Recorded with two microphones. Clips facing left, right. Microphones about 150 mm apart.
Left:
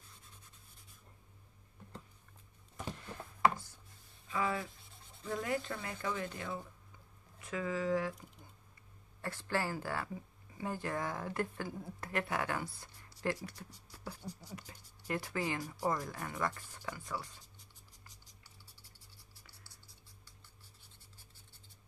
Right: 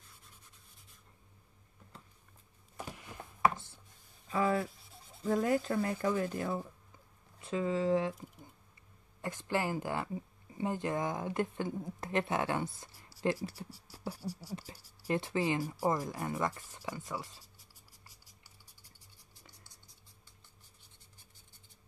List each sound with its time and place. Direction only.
3.4 s chopping: 25° right (ahead or behind)
4.3 s speech: 40° right (ahead or behind)
7.3 s speech: 25° right (ahead or behind)
9.2 s speech: 15° right (ahead or behind)
13.7 s beatboxing: 5° right (ahead or behind)
13.9 s a sound: 30° right (ahead or behind)
14.2 s speech: 10° right (ahead or behind)
15.0 s speech: 25° right (ahead or behind)
15.6 s speech: 5° right (ahead or behind)
15.9 s speech: 25° right (ahead or behind)
18.2 s music: 10° right (ahead or behind)